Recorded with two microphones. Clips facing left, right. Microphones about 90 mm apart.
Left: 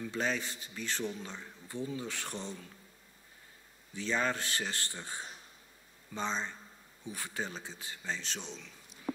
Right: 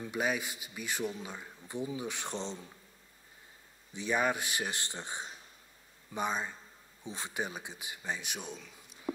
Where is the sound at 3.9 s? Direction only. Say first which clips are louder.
Right 2 dB; 15° right (ahead or behind).